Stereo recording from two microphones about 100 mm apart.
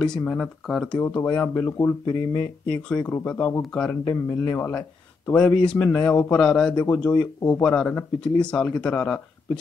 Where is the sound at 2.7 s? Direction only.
15° left (ahead or behind).